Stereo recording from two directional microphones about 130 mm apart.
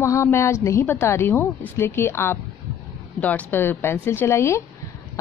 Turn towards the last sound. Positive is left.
turn(degrees=20)  # may be behind; listen again after turning